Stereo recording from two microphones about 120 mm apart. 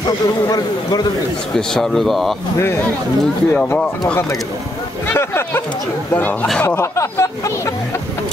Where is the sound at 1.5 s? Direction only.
5° left (ahead or behind).